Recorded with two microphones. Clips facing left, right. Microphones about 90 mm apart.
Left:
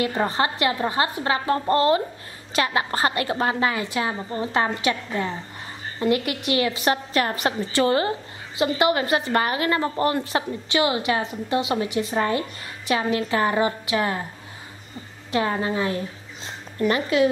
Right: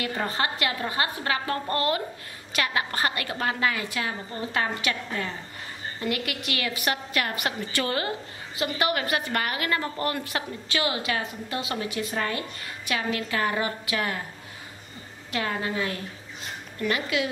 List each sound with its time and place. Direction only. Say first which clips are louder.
0.0 s a woman's voice: left 5 dB; 30° left (ahead or behind)
15.3 s a woman's voice: left 5 dB; 30° left (ahead or behind)
16.4 s a sound: left 5 dB; 30° left (ahead or behind)